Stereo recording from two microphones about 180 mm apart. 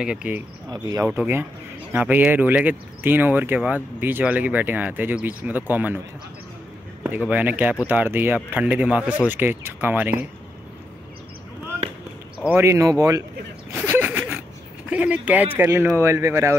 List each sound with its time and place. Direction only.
0.0 s speech: 5° right (ahead or behind)
0.8 s speech: 20° right (ahead or behind)
7.0 s a man's voice: 5° right (ahead or behind)
12.4 s speech: 15° right (ahead or behind)
13.9 s a sound: 10° right (ahead or behind)
14.9 s speech: 10° right (ahead or behind)